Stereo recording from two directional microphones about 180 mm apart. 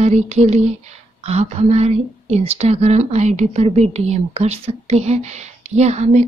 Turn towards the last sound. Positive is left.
turn(degrees=-40)  # may be behind; listen again after turning